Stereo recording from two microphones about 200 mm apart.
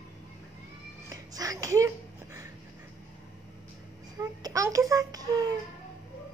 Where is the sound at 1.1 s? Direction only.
20° right (ahead or behind).